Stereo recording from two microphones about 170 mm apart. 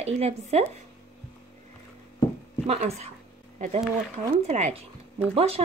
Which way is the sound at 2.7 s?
40° right (ahead or behind).